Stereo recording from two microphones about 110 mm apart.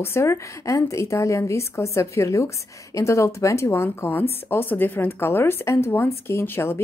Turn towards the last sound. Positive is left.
turn(degrees=25)  # may be behind; listen again after turning